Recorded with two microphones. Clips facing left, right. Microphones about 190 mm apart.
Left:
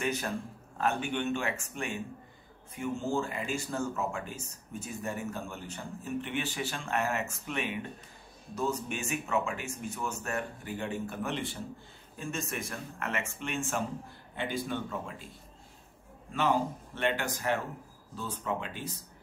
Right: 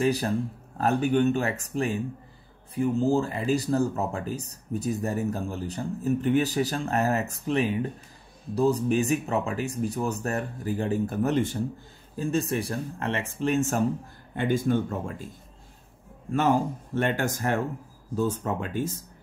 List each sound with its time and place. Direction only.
0.0 s speech: 35° right (ahead or behind)
16.3 s speech: 45° right (ahead or behind)